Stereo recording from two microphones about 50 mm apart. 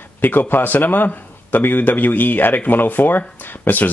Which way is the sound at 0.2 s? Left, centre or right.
Left.